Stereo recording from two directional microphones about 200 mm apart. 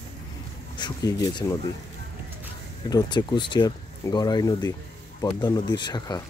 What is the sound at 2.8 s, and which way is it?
Speech, 20° left (ahead or behind).